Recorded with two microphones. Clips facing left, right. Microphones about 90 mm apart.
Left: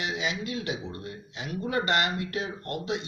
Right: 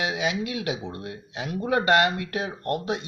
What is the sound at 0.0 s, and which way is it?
Speech, 60° right (ahead or behind).